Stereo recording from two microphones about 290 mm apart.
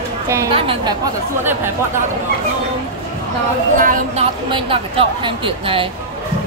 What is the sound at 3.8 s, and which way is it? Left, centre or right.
Speech, right.